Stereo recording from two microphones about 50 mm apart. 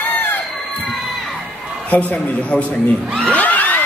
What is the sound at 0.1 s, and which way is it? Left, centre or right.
Crowd, left.